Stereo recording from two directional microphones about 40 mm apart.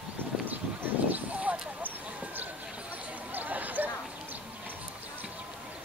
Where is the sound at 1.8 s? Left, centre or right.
Right.